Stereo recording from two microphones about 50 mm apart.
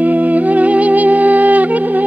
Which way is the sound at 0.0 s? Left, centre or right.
Right.